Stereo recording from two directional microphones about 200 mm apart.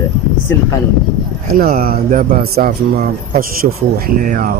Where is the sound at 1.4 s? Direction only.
45° right (ahead or behind).